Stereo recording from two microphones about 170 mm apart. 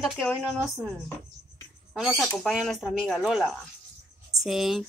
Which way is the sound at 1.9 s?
Centre (ahead or behind).